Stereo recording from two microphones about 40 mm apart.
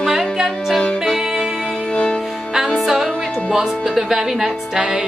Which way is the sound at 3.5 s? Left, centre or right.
Centre.